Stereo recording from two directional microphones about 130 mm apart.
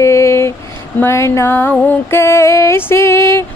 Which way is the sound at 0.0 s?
20° left (ahead or behind).